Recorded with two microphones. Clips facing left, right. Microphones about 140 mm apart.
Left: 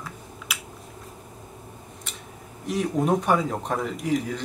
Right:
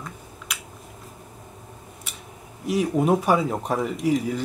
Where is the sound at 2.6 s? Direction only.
5° right (ahead or behind).